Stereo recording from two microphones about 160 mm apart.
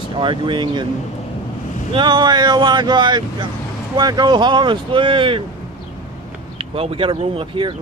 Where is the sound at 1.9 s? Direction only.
30° right (ahead or behind).